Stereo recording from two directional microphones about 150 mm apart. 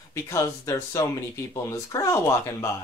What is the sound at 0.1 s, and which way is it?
Speech, 20° left (ahead or behind).